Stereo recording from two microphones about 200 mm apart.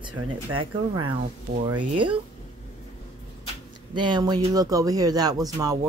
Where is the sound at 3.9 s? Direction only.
20° right (ahead or behind).